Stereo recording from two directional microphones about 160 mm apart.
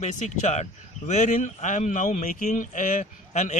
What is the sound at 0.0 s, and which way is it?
Speech, 50° left (ahead or behind).